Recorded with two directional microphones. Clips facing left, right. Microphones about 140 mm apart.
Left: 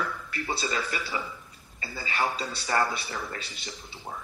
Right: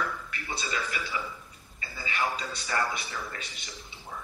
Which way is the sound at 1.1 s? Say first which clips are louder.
Left 1 dB; 40° left (ahead or behind).